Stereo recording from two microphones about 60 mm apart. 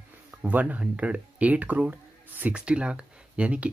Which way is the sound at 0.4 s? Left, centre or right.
Right.